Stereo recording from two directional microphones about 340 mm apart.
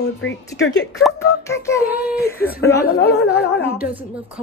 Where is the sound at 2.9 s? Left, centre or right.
Left.